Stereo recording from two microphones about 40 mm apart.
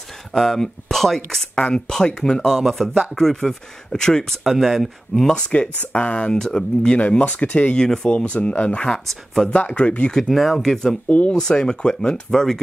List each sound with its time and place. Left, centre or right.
0.3 s speech: centre
1.5 s speech: left
4.5 s speech: centre
5.3 s speech: left
7.0 s speech: left
7.7 s speech: centre; by 10.1 s left
10.3 s speech: centre
10.6 s speech: centre
11.1 s speech: left
11.3 s speech: left
12.3 s speech: centre